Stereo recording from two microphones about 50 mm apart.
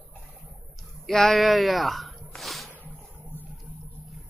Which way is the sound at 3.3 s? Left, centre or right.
Left.